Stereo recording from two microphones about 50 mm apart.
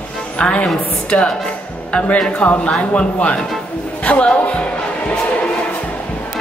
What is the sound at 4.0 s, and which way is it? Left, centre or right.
Music, left.